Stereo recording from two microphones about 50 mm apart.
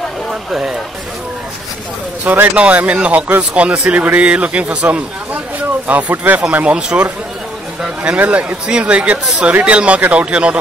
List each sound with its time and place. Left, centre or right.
0.5 s speech: centre
2.5 s speech: right